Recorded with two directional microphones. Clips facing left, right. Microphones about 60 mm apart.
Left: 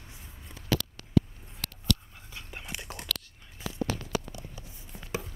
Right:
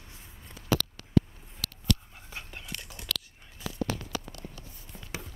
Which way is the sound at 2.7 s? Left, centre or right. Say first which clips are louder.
Left 1 dB; centre.